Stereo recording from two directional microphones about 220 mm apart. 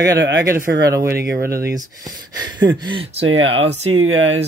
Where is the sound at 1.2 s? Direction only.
15° right (ahead or behind).